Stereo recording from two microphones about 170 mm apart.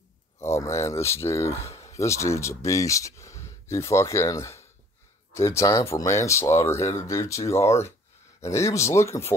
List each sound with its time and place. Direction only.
0.4 s speech: 15° left (ahead or behind)